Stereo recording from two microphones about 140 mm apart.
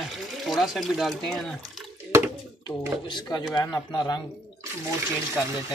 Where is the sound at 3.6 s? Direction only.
25° left (ahead or behind).